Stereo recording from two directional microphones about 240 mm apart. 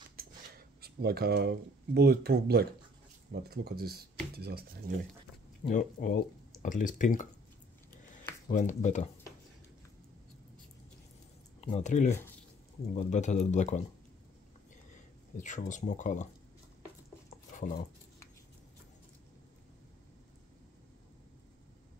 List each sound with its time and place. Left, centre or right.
0.2 s a sound: right
0.7 s speech: right
5.6 s speech: left
8.5 s speech: left
11.6 s speech: left
15.3 s speech: left